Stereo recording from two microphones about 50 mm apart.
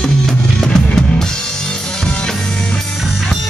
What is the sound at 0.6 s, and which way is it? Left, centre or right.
Music, centre.